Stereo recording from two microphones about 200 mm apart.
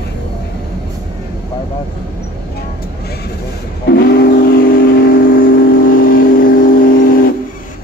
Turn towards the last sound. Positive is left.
turn(degrees=45)  # may be behind; listen again after turning